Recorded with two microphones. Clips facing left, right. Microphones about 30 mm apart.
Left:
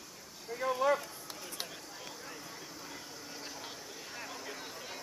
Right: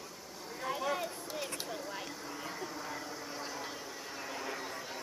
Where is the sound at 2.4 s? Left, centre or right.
Centre.